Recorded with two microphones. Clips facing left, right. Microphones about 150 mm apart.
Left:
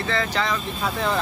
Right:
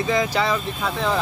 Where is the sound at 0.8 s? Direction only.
Centre (ahead or behind).